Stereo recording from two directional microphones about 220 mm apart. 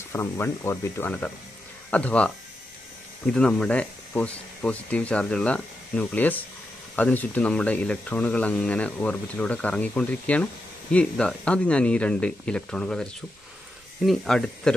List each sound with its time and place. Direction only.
0.1 s speech: 10° left (ahead or behind)